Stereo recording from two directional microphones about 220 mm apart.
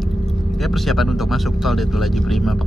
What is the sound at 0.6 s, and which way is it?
Speech, centre (ahead or behind).